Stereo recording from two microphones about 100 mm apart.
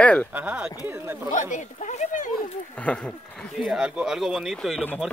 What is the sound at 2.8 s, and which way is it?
Speech, 15° left (ahead or behind).